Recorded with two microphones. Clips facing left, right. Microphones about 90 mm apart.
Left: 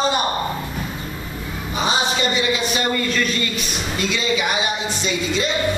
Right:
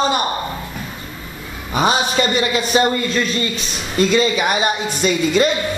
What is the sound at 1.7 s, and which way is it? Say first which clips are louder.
Speech: right 5 dB; 55° right (ahead or behind).